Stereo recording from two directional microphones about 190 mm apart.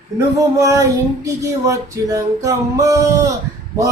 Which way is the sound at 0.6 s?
15° right (ahead or behind).